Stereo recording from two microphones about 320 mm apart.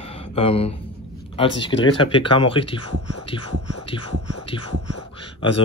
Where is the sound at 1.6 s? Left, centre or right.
Centre.